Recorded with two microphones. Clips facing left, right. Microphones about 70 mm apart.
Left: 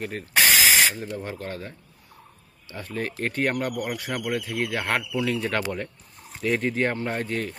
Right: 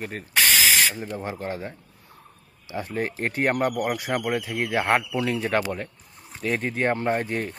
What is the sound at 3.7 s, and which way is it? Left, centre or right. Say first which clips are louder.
Speech: right 4 dB; right.